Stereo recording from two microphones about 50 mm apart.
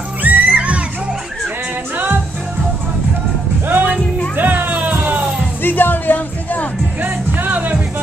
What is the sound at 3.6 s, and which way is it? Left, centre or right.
Music, right.